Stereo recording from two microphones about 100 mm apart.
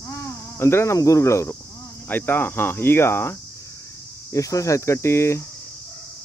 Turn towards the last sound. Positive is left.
turn(degrees=30)  # may be behind; listen again after turning